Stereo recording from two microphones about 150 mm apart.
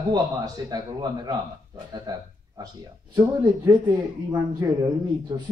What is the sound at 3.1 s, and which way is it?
Speech, 25° right (ahead or behind).